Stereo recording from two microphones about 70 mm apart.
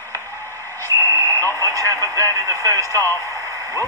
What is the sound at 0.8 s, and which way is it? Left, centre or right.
Radio, right.